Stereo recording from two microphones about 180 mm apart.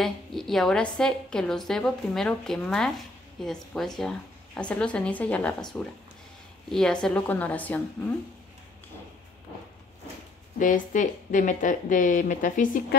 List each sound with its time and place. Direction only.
0.0 s a woman's voice: centre (ahead or behind)
10.6 s a woman's voice: 45° left (ahead or behind)